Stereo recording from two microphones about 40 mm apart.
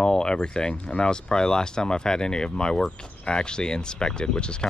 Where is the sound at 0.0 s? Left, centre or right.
Left.